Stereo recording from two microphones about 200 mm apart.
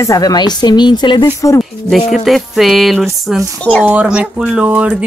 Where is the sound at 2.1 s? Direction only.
Centre (ahead or behind).